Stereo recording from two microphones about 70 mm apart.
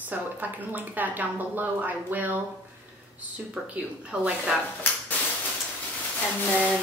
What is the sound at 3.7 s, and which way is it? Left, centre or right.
Speech, centre.